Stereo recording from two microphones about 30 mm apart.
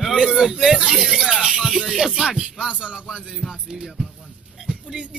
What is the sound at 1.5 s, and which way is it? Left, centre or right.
Speech, centre.